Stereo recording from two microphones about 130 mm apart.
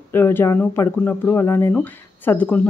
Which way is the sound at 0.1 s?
15° left (ahead or behind).